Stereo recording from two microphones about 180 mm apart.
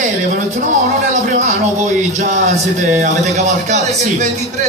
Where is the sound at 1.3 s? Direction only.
40° right (ahead or behind).